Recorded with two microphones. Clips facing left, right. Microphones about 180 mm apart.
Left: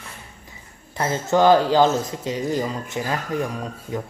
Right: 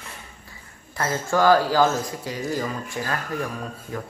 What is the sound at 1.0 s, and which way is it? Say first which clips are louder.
Speech: left 3 dB; 20° left (ahead or behind).